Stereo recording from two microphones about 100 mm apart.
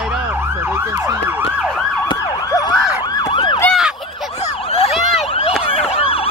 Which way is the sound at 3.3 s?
55° left (ahead or behind).